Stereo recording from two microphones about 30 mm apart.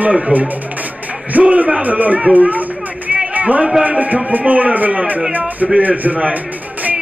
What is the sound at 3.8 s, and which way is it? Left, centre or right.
Speech, right.